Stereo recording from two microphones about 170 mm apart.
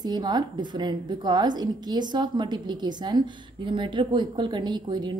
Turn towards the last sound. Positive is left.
turn(degrees=-25)  # may be behind; listen again after turning